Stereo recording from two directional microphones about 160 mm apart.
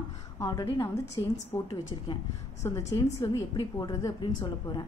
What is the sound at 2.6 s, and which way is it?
A woman's voice, 20° left (ahead or behind).